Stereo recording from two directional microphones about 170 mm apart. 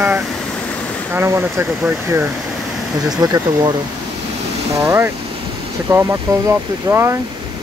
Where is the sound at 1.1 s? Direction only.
15° right (ahead or behind).